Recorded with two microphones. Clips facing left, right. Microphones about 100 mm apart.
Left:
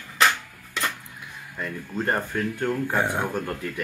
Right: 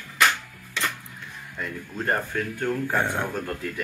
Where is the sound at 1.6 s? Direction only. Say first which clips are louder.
Left 2 dB; 5° left (ahead or behind).